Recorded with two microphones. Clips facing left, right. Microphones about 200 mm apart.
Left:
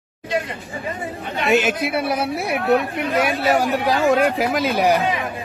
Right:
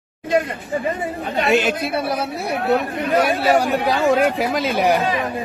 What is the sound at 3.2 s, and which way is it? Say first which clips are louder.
Speech: right 2 dB; 55° right (ahead or behind).